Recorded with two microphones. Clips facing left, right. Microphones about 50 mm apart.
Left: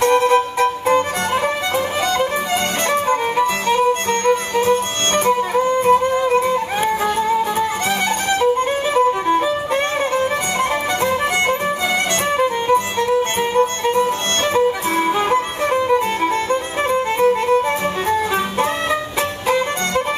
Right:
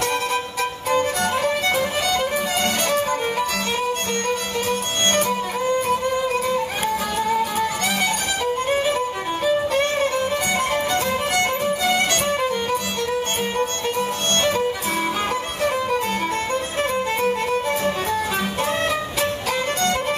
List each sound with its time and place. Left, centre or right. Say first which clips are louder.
0.0 s music: left 9 dB; left
2.9 s music: left 4 dB; left
8.9 s music: left 9 dB; left